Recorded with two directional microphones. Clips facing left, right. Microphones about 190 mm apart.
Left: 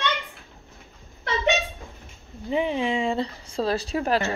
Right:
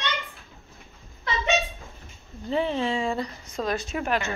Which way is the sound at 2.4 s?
15° left (ahead or behind).